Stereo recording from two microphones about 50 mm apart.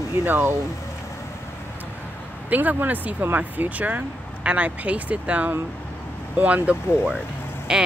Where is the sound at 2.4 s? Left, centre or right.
Right.